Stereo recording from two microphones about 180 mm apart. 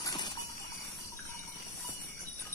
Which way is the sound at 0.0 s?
20° left (ahead or behind).